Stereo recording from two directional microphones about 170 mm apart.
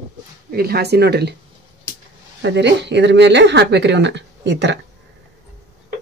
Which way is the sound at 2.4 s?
90° right.